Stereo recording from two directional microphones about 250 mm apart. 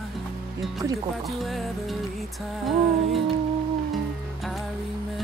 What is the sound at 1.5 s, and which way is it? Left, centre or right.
Music, centre.